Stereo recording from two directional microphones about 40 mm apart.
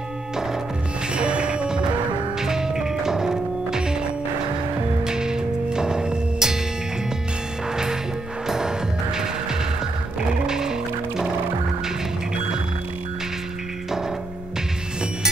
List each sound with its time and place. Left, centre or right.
1.1 s music: right
2.4 s music: centre
5.0 s music: centre
7.7 s music: centre